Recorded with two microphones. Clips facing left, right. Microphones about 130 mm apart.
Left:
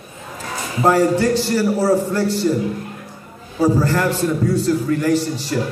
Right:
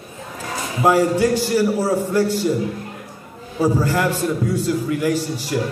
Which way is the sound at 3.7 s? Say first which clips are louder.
Left 1 dB; 10° right (ahead or behind).